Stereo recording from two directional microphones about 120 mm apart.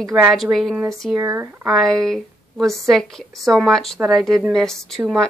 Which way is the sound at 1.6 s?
Centre (ahead or behind).